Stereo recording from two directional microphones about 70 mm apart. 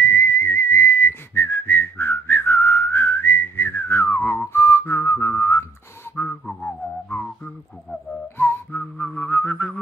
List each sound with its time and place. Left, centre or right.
0.0 s whistling: left
7.1 s music: left
8.4 s whistling: left